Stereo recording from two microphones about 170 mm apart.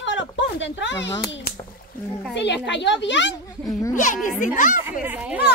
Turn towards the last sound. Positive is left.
turn(degrees=-10)  # may be behind; listen again after turning